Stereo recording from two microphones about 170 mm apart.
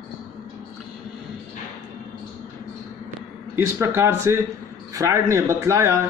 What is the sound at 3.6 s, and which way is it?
Speech, 15° right (ahead or behind).